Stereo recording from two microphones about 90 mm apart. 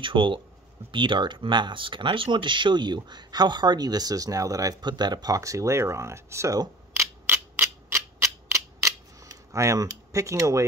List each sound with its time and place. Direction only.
0.0 s speech: 65° right (ahead or behind); by 4.7 s 40° right (ahead or behind)
4.8 s speech: 55° right (ahead or behind); by 6.6 s 35° right (ahead or behind)
7.0 s a sound: 25° right (ahead or behind)
9.5 s speech: 35° right (ahead or behind)